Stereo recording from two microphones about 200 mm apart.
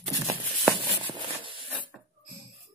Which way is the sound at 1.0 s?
25° right (ahead or behind).